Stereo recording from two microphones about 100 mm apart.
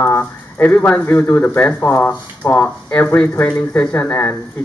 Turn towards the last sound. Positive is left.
turn(degrees=20)  # may be behind; listen again after turning